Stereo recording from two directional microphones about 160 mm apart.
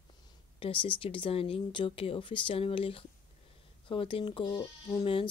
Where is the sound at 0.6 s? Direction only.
30° left (ahead or behind).